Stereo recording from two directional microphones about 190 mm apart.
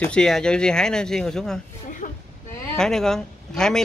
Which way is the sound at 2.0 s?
40° left (ahead or behind).